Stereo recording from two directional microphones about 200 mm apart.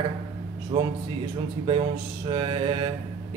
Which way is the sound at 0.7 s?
25° right (ahead or behind).